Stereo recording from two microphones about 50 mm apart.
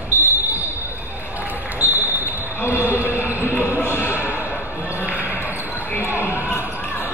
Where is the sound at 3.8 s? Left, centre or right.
Left.